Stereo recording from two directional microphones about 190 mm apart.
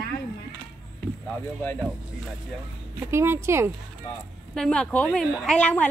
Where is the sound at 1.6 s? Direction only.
10° left (ahead or behind).